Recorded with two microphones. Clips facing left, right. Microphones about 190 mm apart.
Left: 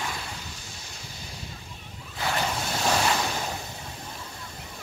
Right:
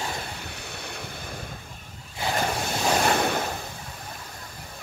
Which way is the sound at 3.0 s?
55° right (ahead or behind).